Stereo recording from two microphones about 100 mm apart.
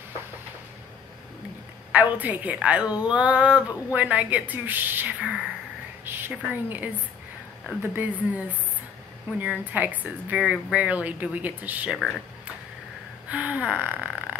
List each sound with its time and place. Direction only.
1.9 s a woman's voice: 15° right (ahead or behind)
13.3 s a woman's voice: 15° right (ahead or behind)